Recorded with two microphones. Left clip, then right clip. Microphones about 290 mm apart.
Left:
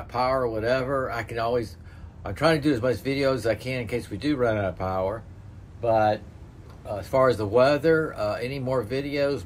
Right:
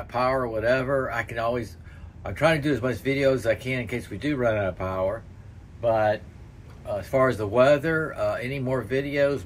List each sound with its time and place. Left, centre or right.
0.1 s speech: centre